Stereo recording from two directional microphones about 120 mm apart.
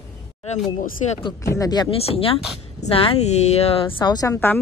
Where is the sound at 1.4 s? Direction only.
30° left (ahead or behind).